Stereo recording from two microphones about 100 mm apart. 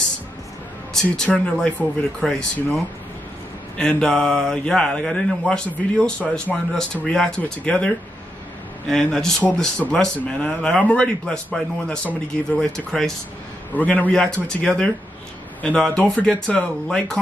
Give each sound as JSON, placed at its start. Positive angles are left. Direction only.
{"t": 1.1, "sound": "speech", "side_deg": 10}
{"t": 3.7, "sound": "speech", "side_deg": 5}